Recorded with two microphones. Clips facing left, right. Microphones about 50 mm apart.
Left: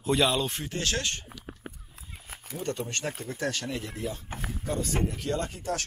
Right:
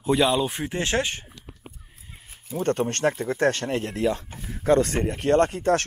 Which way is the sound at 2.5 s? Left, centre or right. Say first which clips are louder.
Right 9 dB; right.